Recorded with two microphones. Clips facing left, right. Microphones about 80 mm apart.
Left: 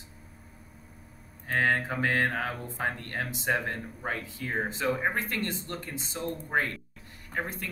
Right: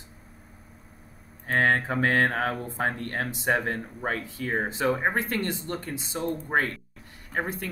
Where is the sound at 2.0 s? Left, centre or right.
Right.